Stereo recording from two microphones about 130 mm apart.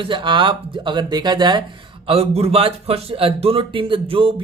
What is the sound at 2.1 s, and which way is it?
Speech, 50° right (ahead or behind).